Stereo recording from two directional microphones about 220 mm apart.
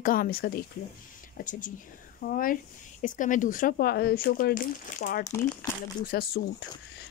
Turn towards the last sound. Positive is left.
turn(degrees=45)  # may be behind; listen again after turning